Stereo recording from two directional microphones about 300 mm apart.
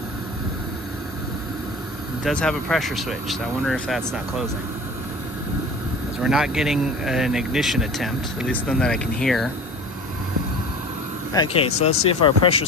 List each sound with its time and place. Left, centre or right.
2.2 s speech: centre
6.2 s speech: centre
11.3 s speech: centre